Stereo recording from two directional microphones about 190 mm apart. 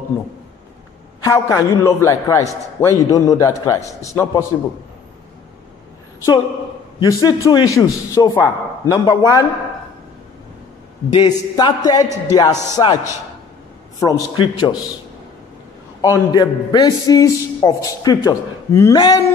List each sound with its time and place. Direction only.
1.2 s a man's voice: 15° left (ahead or behind)
7.0 s a man's voice: 20° left (ahead or behind)
11.1 s a man's voice: 20° left (ahead or behind)
13.9 s a man's voice: 20° left (ahead or behind)
16.0 s a man's voice: 20° left (ahead or behind)